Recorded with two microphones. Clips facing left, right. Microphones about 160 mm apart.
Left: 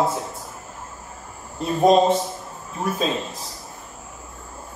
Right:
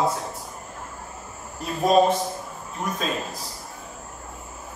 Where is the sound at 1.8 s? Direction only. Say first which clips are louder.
Left 3 dB; 25° left (ahead or behind).